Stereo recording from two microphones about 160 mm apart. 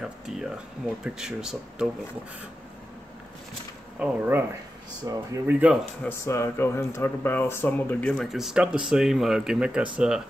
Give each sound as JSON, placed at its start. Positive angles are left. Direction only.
{"t": 0.3, "sound": "a sound", "side_deg": -5}
{"t": 1.0, "sound": "speech", "side_deg": -5}
{"t": 4.0, "sound": "speech", "side_deg": -10}
{"t": 5.1, "sound": "speech", "side_deg": -25}
{"t": 5.5, "sound": "speech", "side_deg": -10}
{"t": 6.0, "sound": "speech", "side_deg": 15}